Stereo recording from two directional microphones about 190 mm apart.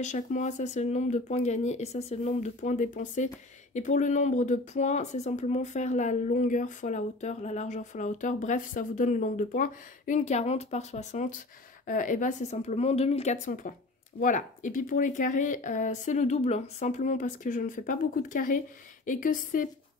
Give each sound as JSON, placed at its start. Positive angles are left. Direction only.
{"t": 0.0, "sound": "speech", "side_deg": 40}